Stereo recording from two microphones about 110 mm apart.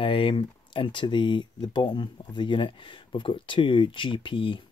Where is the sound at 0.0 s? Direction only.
50° left (ahead or behind).